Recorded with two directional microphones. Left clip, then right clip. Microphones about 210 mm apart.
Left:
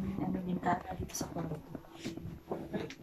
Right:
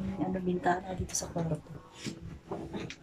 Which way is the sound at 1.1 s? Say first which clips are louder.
Right 5 dB; 15° right (ahead or behind).